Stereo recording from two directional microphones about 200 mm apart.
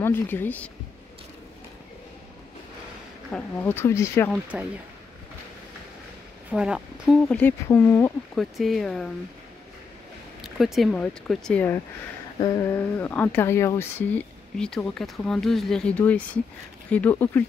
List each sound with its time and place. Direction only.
0.0 s speech: 10° left (ahead or behind)
3.3 s speech: 5° left (ahead or behind)
4.3 s speech: 5° right (ahead or behind)
6.5 s speech: 5° right (ahead or behind)
10.4 s speech: centre (ahead or behind)